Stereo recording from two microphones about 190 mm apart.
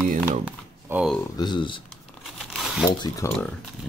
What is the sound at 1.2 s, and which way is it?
Speech, 25° left (ahead or behind).